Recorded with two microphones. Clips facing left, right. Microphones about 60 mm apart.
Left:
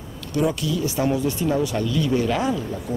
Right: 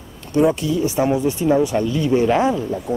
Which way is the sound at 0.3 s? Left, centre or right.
Right.